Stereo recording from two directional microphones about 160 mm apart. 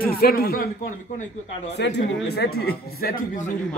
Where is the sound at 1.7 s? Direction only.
90° left; by 3.5 s 55° left (ahead or behind).